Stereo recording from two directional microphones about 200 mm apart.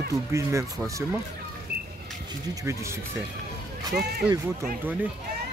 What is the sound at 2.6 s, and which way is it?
Speech, 15° right (ahead or behind).